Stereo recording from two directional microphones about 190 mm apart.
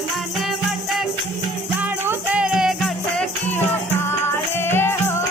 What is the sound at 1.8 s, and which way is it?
Music, 10° right (ahead or behind).